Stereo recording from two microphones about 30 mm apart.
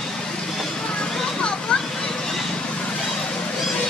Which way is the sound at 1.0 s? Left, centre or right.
Left.